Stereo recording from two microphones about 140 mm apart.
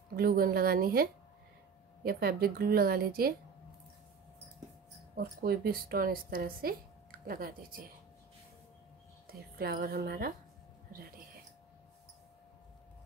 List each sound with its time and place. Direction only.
0.1 s a woman's voice: 90° right
2.0 s a woman's voice: 90° right
5.1 s a woman's voice: 90° right
9.3 s a woman's voice: 90° right